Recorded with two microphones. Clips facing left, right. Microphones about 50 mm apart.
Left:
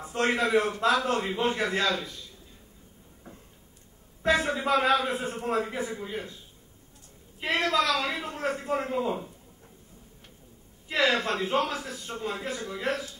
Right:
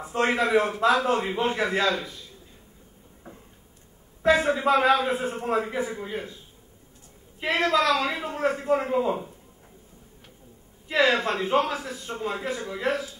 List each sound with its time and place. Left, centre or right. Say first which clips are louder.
0.0 s a man's voice: right 2 dB; centre
3.3 s a sound: right 3 dB; centre
4.5 s a man's voice: right 4 dB; centre
7.6 s a man's voice: right 4 dB; centre
11.1 s a man's voice: right 3 dB; centre
11.6 s a man's voice: right 2 dB; centre